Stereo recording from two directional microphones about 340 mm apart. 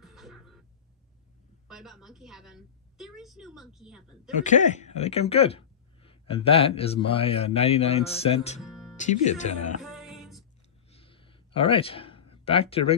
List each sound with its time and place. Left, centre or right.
0.0 s a sound: centre
1.7 s a woman's voice: centre
4.4 s speech: left
8.5 s music: centre
8.9 s speech: left
9.8 s music: centre
10.9 s a sound: centre